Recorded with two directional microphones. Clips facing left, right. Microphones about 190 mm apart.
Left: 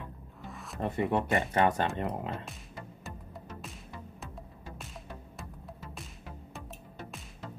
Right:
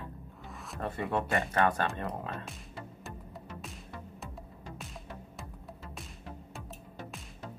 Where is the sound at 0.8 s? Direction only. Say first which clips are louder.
Left 3 dB; 15° left (ahead or behind).